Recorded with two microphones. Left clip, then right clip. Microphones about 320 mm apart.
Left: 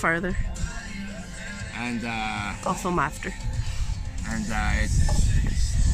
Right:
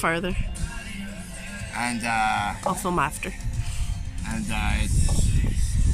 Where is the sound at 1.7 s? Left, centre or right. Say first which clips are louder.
Right 6 dB; right.